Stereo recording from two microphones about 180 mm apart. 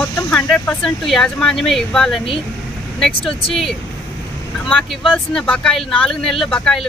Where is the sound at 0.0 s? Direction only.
5° left (ahead or behind).